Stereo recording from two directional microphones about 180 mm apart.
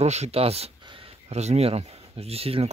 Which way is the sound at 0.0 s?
35° right (ahead or behind).